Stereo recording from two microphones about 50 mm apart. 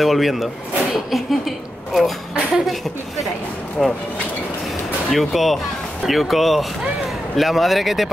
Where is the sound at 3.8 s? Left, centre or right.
Centre.